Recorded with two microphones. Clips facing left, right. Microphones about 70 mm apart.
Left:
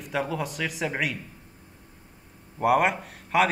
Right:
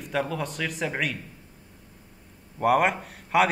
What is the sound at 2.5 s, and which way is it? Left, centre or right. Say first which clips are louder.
Speech: even; centre.